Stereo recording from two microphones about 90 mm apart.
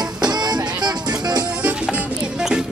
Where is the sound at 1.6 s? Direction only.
15° right (ahead or behind).